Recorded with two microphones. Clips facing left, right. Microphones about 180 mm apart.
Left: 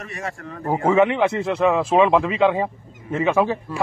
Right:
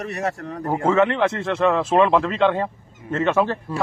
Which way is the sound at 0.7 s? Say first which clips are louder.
Left 1 dB; 5° left (ahead or behind).